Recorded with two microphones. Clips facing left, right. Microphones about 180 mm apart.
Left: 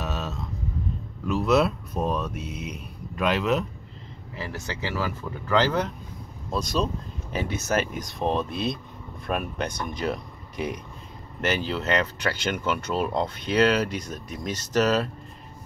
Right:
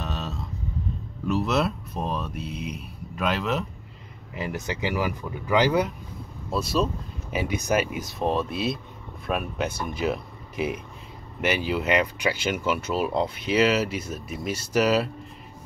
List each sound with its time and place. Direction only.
0.0 s a sound: centre (ahead or behind)
1.2 s speech: centre (ahead or behind)
4.3 s speech: 20° right (ahead or behind)